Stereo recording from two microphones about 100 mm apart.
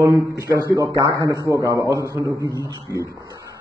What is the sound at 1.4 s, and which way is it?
A man's voice, 35° right (ahead or behind).